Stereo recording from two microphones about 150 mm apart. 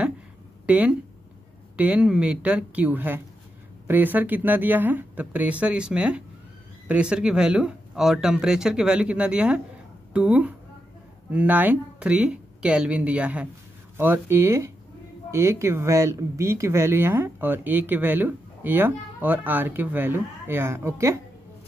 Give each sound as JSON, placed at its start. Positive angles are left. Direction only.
{"t": 0.7, "sound": "speech", "side_deg": -10}